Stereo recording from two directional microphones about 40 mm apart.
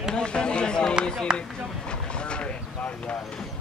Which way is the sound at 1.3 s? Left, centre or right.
Right.